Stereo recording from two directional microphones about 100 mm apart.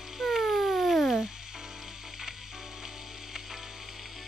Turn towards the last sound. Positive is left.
turn(degrees=-5)  # may be behind; listen again after turning